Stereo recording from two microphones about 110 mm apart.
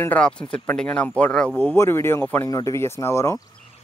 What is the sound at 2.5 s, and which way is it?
Speech, 30° left (ahead or behind).